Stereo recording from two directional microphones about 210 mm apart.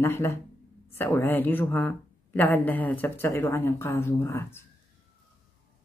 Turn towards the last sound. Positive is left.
turn(degrees=10)  # may be behind; listen again after turning